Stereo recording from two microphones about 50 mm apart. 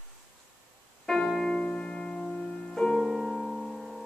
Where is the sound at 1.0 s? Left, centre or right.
Centre.